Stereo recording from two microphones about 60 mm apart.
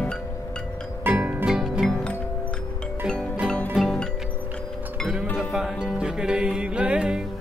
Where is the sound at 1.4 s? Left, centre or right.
Centre.